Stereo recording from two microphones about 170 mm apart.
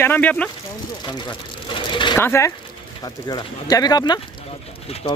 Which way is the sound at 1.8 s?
30° left (ahead or behind).